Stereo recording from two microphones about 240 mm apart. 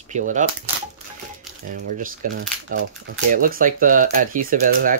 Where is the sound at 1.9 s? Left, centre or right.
Right.